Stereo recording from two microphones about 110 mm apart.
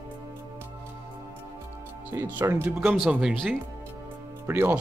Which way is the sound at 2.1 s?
20° right (ahead or behind).